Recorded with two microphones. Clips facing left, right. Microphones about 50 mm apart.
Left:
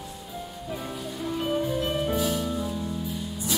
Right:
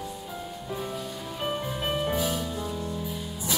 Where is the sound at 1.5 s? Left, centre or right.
Centre.